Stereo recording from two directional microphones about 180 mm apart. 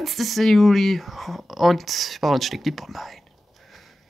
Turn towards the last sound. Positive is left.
turn(degrees=0)  # may be behind; listen again after turning